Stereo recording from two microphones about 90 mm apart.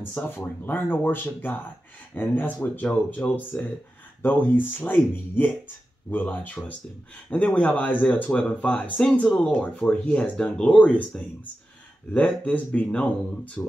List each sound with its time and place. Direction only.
0.0 s speech: 25° left (ahead or behind)